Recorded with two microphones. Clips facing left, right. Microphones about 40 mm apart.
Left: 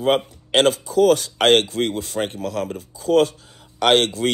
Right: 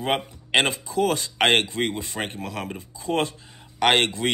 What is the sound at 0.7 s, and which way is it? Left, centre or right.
Speech, right.